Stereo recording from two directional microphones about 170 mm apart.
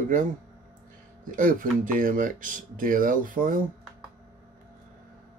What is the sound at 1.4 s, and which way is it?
Speech, 50° right (ahead or behind).